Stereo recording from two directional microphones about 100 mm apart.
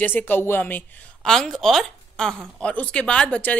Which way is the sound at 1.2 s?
5° left (ahead or behind).